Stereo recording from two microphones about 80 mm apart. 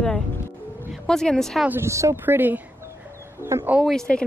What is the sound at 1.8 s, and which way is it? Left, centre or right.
Speech, right.